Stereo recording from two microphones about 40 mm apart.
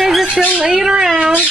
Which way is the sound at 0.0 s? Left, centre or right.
Centre.